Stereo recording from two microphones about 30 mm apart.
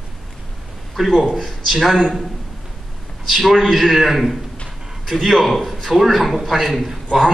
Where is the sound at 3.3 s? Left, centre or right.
Centre.